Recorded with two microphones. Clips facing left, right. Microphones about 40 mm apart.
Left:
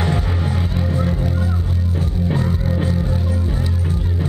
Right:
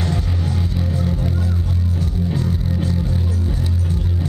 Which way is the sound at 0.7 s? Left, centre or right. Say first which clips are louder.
Left 3 dB; left.